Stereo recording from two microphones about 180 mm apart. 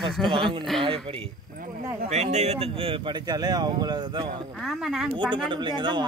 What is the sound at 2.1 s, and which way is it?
Speech, 40° right (ahead or behind).